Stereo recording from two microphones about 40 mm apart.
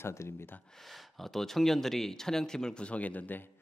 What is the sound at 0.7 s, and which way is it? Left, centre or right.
Speech, centre.